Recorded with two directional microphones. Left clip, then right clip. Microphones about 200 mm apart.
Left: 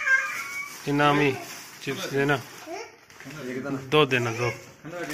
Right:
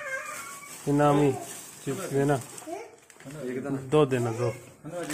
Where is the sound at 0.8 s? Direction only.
30° right (ahead or behind).